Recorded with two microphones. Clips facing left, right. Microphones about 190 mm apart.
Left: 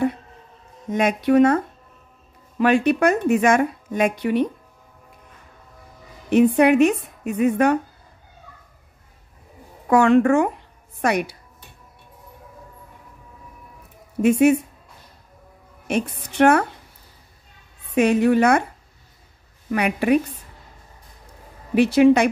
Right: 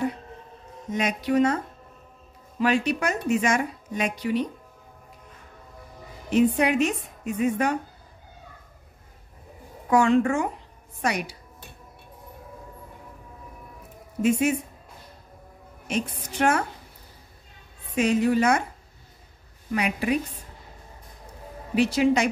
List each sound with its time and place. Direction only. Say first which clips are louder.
0.9 s speech: left 6 dB; 55° left (ahead or behind)
2.6 s speech: left 6 dB; 55° left (ahead or behind)
6.3 s speech: left 6 dB; 60° left (ahead or behind)
9.8 s speech: left 5 dB; 60° left (ahead or behind)
14.2 s speech: left 7 dB; 60° left (ahead or behind)
15.9 s speech: left 5 dB; 60° left (ahead or behind)
17.9 s speech: left 5 dB; 60° left (ahead or behind)
19.7 s speech: left 6 dB; 60° left (ahead or behind)
21.7 s speech: left 7 dB; 60° left (ahead or behind)